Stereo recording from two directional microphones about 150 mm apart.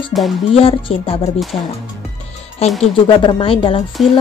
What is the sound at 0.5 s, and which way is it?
Speech, 40° left (ahead or behind).